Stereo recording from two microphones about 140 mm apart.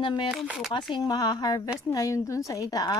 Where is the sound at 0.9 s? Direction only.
30° left (ahead or behind).